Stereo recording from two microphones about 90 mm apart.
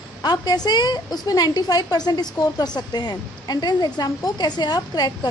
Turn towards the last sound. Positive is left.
turn(degrees=50)  # may be behind; listen again after turning